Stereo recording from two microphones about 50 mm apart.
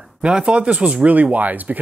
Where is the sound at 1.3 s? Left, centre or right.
Right.